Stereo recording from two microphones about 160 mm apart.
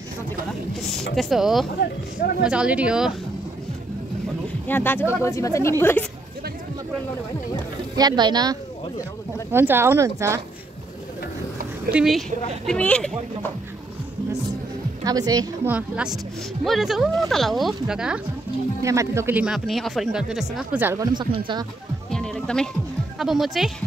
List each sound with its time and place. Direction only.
1.1 s speech: centre (ahead or behind)
4.6 s speech: 10° left (ahead or behind)
7.9 s speech: 25° right (ahead or behind)
9.5 s speech: 15° right (ahead or behind)
11.9 s speech: centre (ahead or behind)
15.0 s speech: 25° right (ahead or behind)
15.7 s speech: 5° right (ahead or behind)
18.8 s speech: 20° right (ahead or behind)
22.1 s music: 5° left (ahead or behind)
23.1 s speech: centre (ahead or behind)